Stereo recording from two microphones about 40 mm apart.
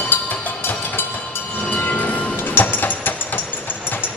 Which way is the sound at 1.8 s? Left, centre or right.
Left.